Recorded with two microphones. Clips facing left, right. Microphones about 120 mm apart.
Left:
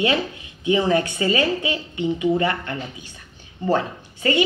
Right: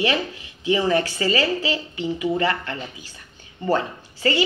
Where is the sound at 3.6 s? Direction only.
15° left (ahead or behind).